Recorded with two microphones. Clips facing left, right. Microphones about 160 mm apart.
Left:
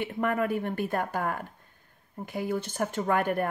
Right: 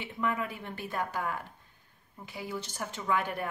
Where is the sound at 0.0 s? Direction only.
55° left (ahead or behind).